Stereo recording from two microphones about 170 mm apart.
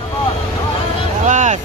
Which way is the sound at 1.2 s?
45° right (ahead or behind).